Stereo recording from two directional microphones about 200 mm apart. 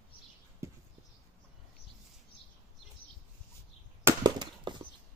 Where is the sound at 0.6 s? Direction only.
15° right (ahead or behind).